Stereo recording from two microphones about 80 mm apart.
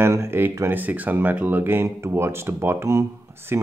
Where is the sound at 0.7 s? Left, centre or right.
Right.